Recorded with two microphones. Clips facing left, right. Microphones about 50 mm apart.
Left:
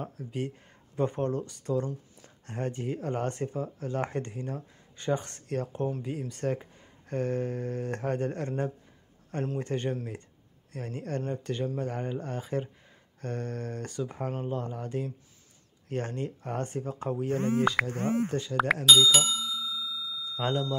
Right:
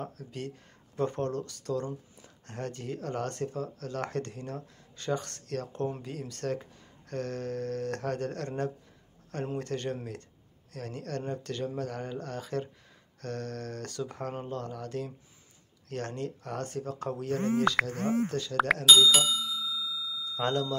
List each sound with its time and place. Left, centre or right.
0.0 s speech: centre
18.9 s bicycle bell: centre